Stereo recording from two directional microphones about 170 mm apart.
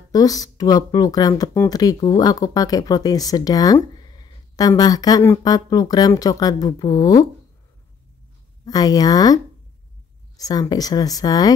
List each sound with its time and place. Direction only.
0.1 s speech: 20° left (ahead or behind)
8.6 s speech: 20° left (ahead or behind)